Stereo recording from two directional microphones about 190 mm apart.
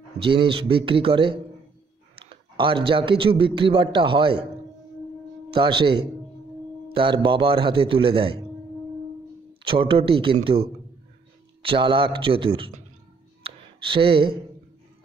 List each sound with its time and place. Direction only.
0.2 s a man's voice: 25° right (ahead or behind)
5.5 s a man's voice: 25° right (ahead or behind)
9.7 s a man's voice: 25° right (ahead or behind)
11.6 s a man's voice: 25° right (ahead or behind)
13.4 s a sound: 25° right (ahead or behind)